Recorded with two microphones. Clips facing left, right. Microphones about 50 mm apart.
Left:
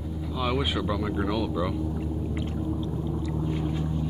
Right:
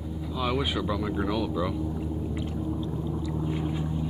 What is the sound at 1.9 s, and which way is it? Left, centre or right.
Whale vocalization, left.